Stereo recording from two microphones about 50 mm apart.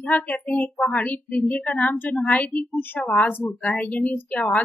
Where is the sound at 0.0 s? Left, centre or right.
Left.